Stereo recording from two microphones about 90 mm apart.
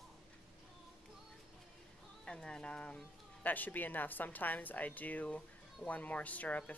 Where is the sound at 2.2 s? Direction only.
10° left (ahead or behind).